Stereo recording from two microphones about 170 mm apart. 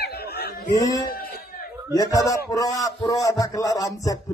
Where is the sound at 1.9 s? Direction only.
20° left (ahead or behind).